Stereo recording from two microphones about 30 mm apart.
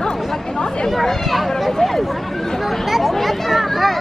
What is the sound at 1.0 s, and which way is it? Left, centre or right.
Chatter, centre.